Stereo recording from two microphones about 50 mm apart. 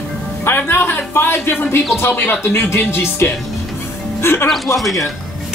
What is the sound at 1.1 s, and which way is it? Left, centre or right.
Speech, left.